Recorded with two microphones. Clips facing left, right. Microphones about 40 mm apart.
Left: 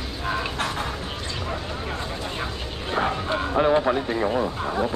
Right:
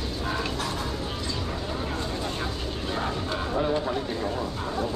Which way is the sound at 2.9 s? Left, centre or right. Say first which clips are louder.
Left 6 dB; left.